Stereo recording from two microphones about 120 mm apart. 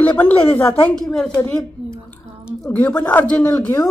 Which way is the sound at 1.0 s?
5° left (ahead or behind).